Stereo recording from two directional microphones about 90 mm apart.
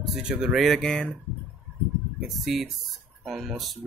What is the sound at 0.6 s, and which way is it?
Speech, 5° left (ahead or behind).